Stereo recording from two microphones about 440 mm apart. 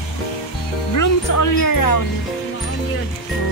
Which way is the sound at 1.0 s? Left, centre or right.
Left.